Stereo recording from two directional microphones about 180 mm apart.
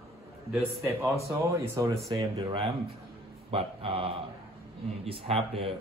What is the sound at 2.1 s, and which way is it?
Speech, 30° right (ahead or behind).